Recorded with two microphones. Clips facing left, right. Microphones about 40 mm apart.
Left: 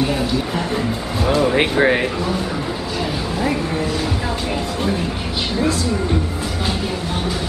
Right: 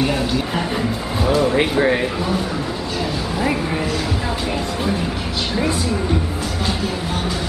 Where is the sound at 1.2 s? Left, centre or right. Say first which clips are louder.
Even; centre.